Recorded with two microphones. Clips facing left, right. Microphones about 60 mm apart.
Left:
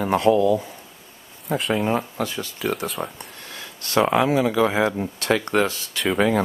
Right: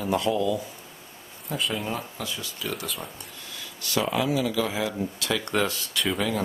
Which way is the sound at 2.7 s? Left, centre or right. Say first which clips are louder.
Left 6 dB; left.